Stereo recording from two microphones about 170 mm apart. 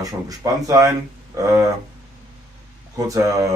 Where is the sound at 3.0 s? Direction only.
20° right (ahead or behind).